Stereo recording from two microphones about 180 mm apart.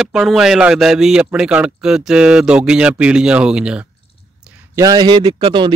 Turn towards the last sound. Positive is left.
turn(degrees=-25)  # may be behind; listen again after turning